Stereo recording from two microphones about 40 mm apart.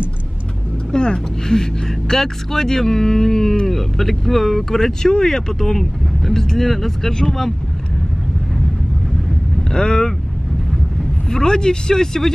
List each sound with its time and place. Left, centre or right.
0.9 s speech: centre
9.7 s speech: centre
11.2 s speech: centre